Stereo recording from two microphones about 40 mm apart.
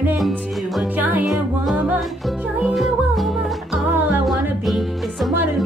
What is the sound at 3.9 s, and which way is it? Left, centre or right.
Music, right.